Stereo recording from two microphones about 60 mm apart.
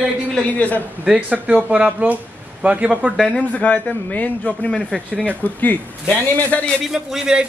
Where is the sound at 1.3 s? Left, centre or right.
Right.